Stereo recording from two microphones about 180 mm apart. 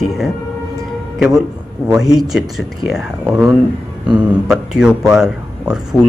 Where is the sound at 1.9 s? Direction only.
Centre (ahead or behind).